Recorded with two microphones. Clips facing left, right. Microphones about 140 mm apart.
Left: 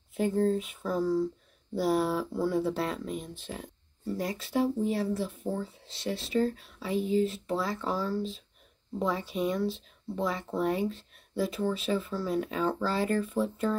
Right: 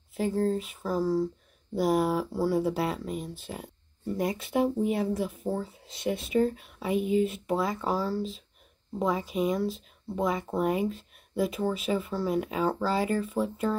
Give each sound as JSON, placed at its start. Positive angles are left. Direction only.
{"t": 0.1, "sound": "speech", "side_deg": -5}
{"t": 4.2, "sound": "speech", "side_deg": -20}